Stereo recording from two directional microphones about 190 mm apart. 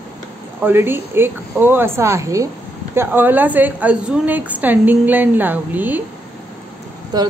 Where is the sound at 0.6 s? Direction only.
10° right (ahead or behind).